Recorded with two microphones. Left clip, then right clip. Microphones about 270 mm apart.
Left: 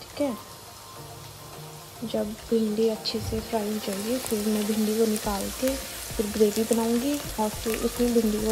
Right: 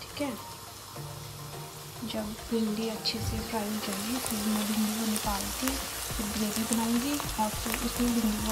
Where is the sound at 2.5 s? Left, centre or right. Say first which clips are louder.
Left 8 dB; centre.